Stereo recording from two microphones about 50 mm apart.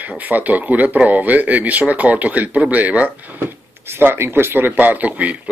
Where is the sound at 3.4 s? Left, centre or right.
Right.